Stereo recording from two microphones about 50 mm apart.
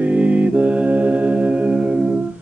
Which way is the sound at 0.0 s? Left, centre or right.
Right.